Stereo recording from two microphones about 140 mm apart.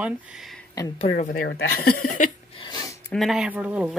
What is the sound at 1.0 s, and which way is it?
Speech, 50° left (ahead or behind).